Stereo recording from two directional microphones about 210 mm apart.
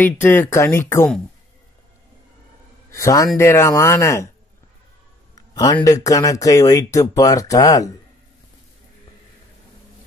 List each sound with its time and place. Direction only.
0.0 s speech: 10° left (ahead or behind)
2.9 s a man's voice: 15° left (ahead or behind)
5.3 s speech: 20° left (ahead or behind)